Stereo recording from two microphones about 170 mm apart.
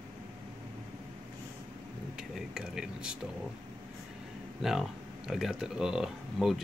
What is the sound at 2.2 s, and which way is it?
Speech, 5° right (ahead or behind).